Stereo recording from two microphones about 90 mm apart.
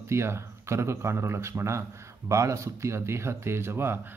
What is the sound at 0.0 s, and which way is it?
Speech, 30° right (ahead or behind).